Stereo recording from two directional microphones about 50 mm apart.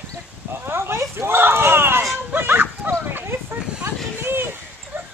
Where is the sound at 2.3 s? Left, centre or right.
Right.